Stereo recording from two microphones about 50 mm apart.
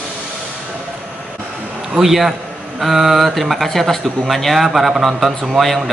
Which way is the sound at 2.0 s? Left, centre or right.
Centre.